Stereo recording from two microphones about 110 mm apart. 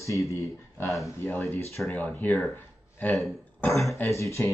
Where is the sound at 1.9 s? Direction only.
15° left (ahead or behind).